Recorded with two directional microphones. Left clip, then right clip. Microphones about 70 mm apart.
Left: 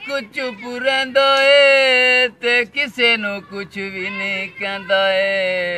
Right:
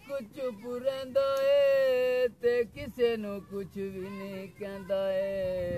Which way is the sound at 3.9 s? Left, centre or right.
Right.